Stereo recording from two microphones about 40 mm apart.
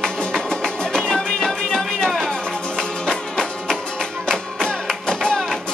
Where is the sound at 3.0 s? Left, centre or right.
Centre.